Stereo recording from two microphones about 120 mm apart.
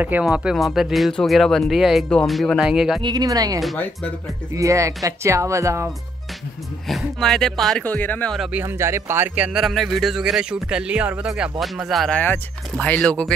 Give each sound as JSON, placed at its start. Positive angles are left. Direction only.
{"t": 0.2, "sound": "speech", "side_deg": -5}
{"t": 3.0, "sound": "speech", "side_deg": -35}
{"t": 3.7, "sound": "speech", "side_deg": 10}
{"t": 4.6, "sound": "speech", "side_deg": -25}
{"t": 6.9, "sound": "speech", "side_deg": 0}
{"t": 7.8, "sound": "speech", "side_deg": 15}
{"t": 8.4, "sound": "speech", "side_deg": -10}
{"t": 8.6, "sound": "speech", "side_deg": -20}
{"t": 12.2, "sound": "speech", "side_deg": 15}